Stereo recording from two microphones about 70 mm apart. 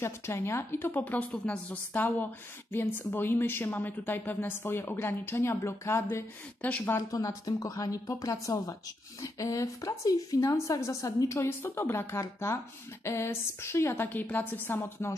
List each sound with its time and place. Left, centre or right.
0.0 s a woman's voice: left
6.6 s a woman's voice: left
7.2 s a woman's voice: left